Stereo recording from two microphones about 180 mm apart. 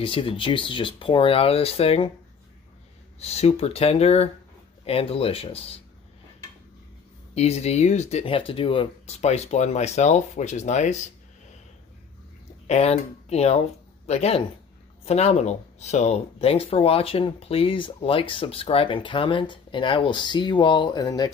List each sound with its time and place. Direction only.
0.0 s speech: 30° left (ahead or behind)
3.2 s speech: 35° left (ahead or behind)
7.3 s speech: 35° left (ahead or behind)
12.6 s speech: 35° left (ahead or behind)